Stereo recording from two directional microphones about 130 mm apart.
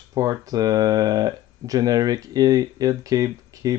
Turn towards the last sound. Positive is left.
turn(degrees=-25)  # may be behind; listen again after turning